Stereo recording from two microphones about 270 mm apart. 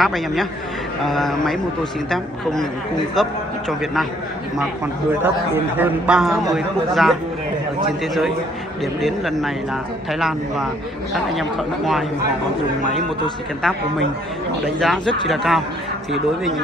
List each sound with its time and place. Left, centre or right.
0.0 s a man's voice: centre
5.2 s a man's voice: centre
12.8 s a man's voice: left
13.6 s a man's voice: centre